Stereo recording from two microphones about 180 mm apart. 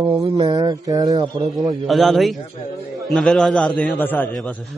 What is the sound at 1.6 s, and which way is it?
A man's voice, centre (ahead or behind).